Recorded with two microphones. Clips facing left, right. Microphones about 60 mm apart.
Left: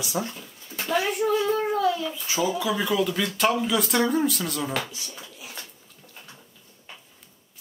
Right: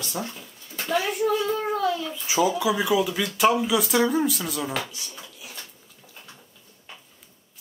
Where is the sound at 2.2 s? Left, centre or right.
Centre.